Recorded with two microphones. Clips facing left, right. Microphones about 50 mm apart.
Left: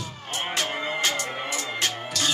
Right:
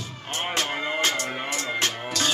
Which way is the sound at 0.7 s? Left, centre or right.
Centre.